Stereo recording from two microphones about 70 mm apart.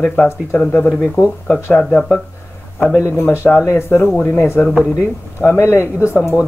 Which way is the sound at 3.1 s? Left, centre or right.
Left.